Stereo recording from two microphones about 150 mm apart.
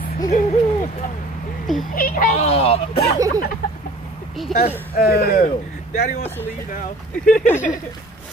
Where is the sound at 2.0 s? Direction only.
70° left (ahead or behind).